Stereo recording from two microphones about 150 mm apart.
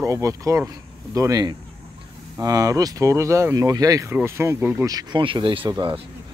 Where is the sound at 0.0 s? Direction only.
20° right (ahead or behind).